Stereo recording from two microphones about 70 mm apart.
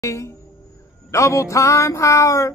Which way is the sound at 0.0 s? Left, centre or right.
Left.